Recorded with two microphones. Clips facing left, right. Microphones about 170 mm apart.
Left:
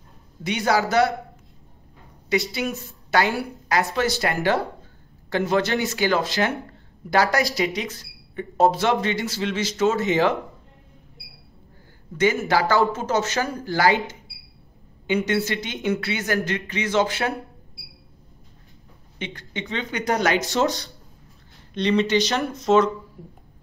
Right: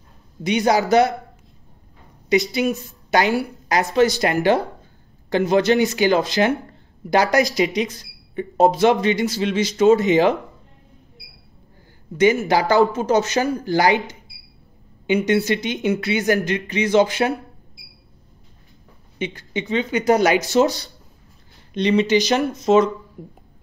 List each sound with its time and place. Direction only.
0.4 s speech: 15° right (ahead or behind)
2.2 s speech: 15° right (ahead or behind)
12.2 s speech: 15° right (ahead or behind)
19.1 s speech: 10° right (ahead or behind)